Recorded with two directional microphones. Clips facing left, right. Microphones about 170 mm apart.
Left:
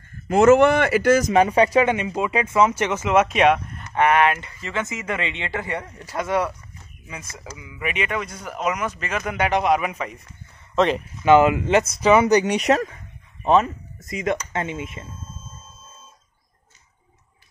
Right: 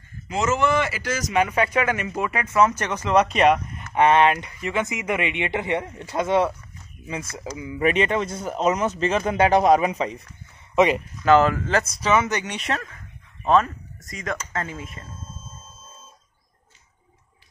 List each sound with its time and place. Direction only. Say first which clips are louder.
0.1 s a man's voice: left 10 dB; 55° left (ahead or behind)
1.3 s speech: left 5 dB; 35° left (ahead or behind); by 3.8 s centre (ahead or behind)
3.9 s speech: right 1 dB; 25° right (ahead or behind)
7.5 s speech: right 7 dB; 30° right (ahead or behind)
11.2 s speech: left 2 dB; 10° left (ahead or behind)
12.0 s speech: left 9 dB; 30° left (ahead or behind)